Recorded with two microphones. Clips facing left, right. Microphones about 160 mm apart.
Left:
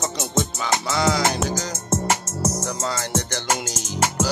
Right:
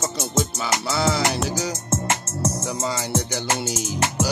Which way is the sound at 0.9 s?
5° right (ahead or behind).